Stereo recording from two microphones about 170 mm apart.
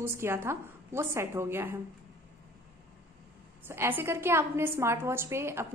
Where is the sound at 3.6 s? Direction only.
15° right (ahead or behind).